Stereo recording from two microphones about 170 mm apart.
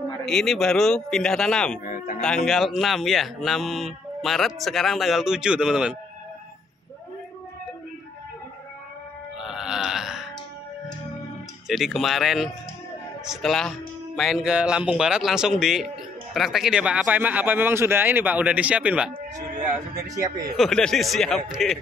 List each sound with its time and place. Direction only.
0.2 s speech: centre (ahead or behind)
1.9 s speech: 50° left (ahead or behind)
2.2 s speech: 5° left (ahead or behind)
9.4 s burping: 5° right (ahead or behind)
11.6 s speech: centre (ahead or behind)
20.5 s speech: centre (ahead or behind)